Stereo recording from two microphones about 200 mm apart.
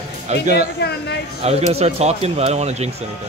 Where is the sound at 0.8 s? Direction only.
55° left (ahead or behind).